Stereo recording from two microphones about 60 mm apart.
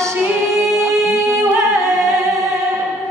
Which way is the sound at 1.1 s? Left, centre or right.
Right.